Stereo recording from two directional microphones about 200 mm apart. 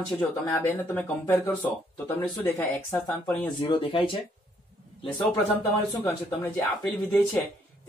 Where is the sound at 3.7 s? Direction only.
25° left (ahead or behind).